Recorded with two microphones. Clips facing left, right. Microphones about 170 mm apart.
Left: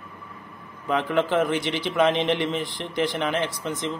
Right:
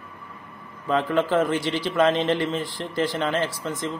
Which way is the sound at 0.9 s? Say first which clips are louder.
Right 1 dB; 15° left (ahead or behind).